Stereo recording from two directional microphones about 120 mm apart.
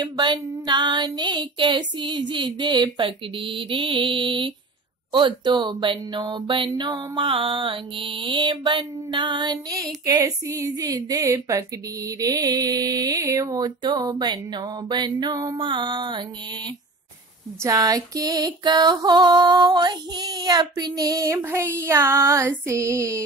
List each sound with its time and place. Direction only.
0.0 s a woman's voice: 35° right (ahead or behind)
6.8 s mantra: 45° right (ahead or behind)
10.0 s a woman's voice: 30° right (ahead or behind)
17.6 s a woman's voice: 30° right (ahead or behind)
22.7 s a sound: 25° right (ahead or behind)